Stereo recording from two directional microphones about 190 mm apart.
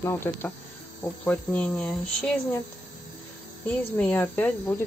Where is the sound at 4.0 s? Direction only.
10° left (ahead or behind).